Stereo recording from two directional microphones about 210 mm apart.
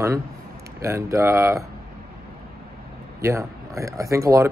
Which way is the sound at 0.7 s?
15° right (ahead or behind).